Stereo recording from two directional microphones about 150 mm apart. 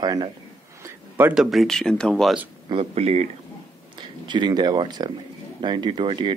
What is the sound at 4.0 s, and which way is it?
Speech, 30° right (ahead or behind).